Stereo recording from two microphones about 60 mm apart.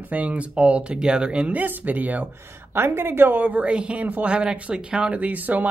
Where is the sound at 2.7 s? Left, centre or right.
Right.